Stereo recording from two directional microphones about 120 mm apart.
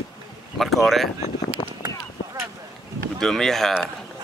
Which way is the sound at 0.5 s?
Centre (ahead or behind).